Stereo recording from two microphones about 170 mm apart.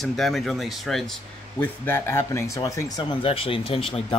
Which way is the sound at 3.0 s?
35° left (ahead or behind).